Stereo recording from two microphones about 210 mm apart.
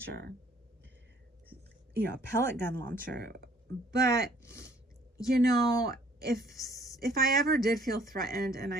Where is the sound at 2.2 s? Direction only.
10° left (ahead or behind).